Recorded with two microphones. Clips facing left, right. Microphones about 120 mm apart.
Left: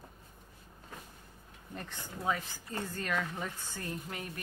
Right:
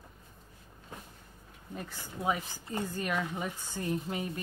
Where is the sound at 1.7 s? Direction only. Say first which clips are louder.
Right 2 dB; 5° right (ahead or behind).